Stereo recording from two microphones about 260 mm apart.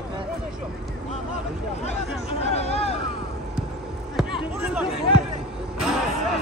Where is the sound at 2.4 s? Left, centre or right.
Left.